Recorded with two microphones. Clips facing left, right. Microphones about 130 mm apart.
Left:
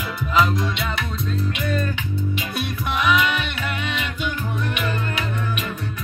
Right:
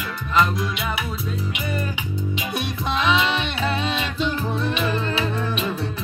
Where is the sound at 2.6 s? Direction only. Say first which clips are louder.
Even; 25° right (ahead or behind).